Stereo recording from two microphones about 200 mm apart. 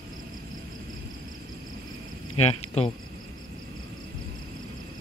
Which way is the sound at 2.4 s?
30° left (ahead or behind).